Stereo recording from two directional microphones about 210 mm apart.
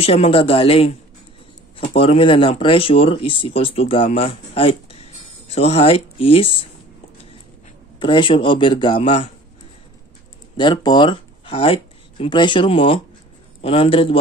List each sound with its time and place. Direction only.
0.0 s speech: 25° left (ahead or behind)
8.0 s speech: 25° left (ahead or behind)
10.6 s speech: 20° left (ahead or behind)